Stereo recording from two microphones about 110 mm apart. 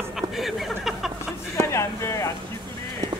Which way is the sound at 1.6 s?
25° left (ahead or behind).